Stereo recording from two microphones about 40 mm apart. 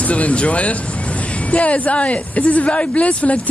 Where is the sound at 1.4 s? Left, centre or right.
Left.